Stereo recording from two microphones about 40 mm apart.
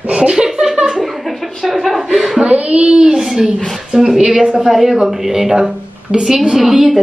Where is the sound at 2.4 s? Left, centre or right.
Right; by 7.0 s centre.